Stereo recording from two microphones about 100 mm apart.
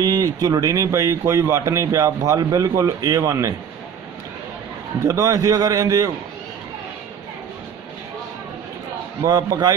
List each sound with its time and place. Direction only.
0.0 s speech: 40° right (ahead or behind)
5.0 s speech: 35° right (ahead or behind)
9.2 s speech: 40° right (ahead or behind)